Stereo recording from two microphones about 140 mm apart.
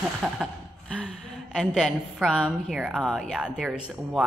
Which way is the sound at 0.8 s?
5° left (ahead or behind).